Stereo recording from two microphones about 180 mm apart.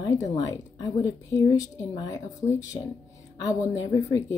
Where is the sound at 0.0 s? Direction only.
20° left (ahead or behind).